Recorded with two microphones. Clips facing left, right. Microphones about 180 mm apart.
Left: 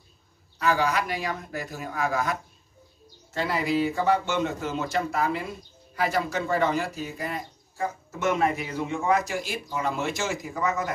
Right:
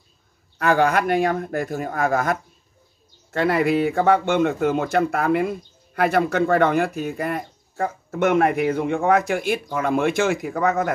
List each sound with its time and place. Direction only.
0.6 s speech: 55° right (ahead or behind)